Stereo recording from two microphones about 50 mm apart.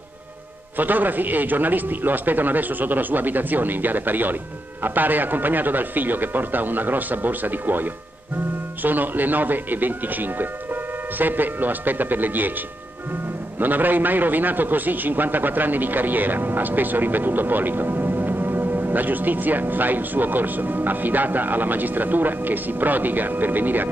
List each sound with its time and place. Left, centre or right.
0.7 s a man's voice: right
13.6 s a man's voice: right